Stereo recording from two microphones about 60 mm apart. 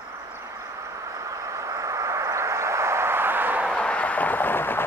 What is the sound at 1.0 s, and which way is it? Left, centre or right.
Vehicle, right.